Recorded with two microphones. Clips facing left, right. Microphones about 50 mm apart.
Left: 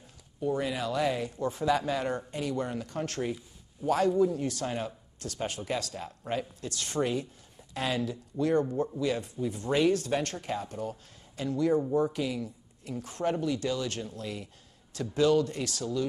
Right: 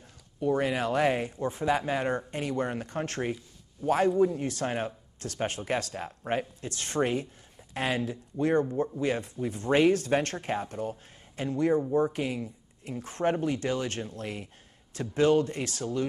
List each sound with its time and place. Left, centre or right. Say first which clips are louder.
0.4 s speech: right 3 dB; right
1.3 s speech: even; right